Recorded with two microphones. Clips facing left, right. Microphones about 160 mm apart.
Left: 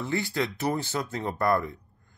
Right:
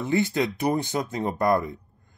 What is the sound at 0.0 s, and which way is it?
Speech, 20° right (ahead or behind).